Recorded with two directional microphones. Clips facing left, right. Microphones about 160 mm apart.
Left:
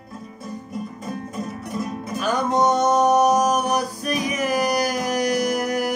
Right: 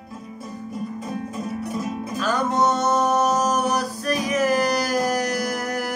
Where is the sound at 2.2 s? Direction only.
15° left (ahead or behind).